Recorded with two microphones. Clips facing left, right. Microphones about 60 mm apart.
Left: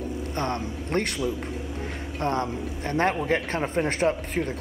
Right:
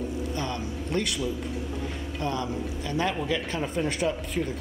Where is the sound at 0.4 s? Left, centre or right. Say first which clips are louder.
Left 3 dB; left.